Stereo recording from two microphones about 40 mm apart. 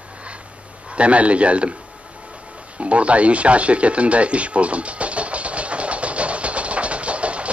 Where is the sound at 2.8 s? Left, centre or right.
Right.